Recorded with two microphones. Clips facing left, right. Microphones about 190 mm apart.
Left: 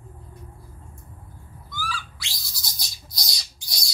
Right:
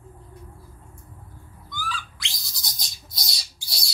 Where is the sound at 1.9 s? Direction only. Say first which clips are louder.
Even; centre (ahead or behind).